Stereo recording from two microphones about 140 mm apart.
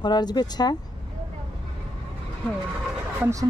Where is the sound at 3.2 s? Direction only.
20° right (ahead or behind).